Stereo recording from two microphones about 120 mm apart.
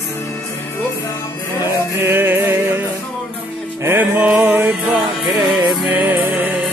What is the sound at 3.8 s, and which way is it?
Music, 20° right (ahead or behind).